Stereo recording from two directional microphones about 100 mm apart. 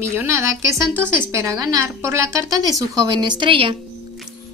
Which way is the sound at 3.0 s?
50° right (ahead or behind).